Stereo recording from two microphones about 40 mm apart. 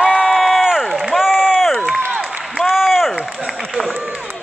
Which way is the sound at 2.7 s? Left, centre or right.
Centre.